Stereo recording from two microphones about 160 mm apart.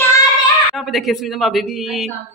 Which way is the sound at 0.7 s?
Centre (ahead or behind).